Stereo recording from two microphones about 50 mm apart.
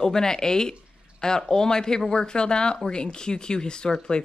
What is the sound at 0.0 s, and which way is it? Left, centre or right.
Speech, centre.